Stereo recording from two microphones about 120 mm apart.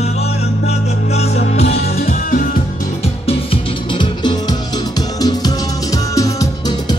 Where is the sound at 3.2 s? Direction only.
50° left (ahead or behind).